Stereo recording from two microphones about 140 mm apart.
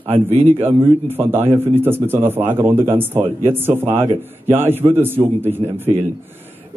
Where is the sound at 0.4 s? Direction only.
15° right (ahead or behind).